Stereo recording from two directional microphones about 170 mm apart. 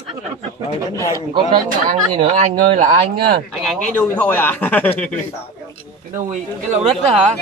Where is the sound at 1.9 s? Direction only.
40° right (ahead or behind).